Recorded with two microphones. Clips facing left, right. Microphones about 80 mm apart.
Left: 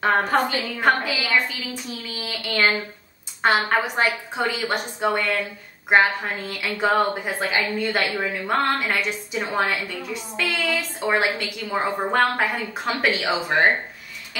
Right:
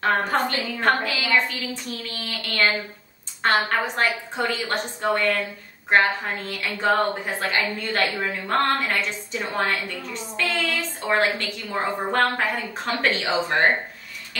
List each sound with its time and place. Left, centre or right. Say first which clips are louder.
0.0 s a woman's voice: left 2 dB; centre
6.5 s a woman's voice: left 3 dB; centre
6.9 s a woman's voice: even; centre